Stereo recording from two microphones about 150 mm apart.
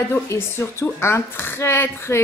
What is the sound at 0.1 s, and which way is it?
A woman's voice, 15° left (ahead or behind).